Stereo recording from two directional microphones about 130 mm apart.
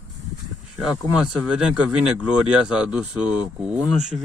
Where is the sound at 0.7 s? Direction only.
5° right (ahead or behind).